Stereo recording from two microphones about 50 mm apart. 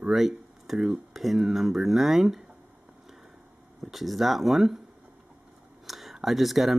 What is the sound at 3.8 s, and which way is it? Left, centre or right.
Speech, centre.